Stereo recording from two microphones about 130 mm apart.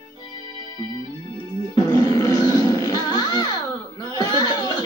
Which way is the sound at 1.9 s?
25° left (ahead or behind).